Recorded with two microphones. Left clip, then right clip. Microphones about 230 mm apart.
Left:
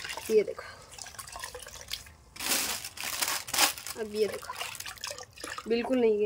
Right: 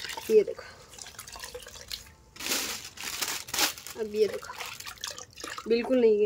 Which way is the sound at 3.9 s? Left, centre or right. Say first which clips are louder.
Right 7 dB; centre.